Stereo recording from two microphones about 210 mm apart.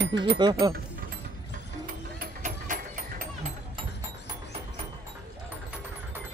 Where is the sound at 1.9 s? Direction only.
40° right (ahead or behind).